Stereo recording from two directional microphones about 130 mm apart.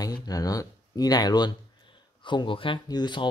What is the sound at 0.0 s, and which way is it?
Speech, 30° left (ahead or behind).